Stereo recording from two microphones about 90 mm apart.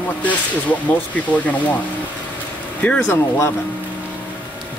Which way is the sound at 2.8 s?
20° left (ahead or behind).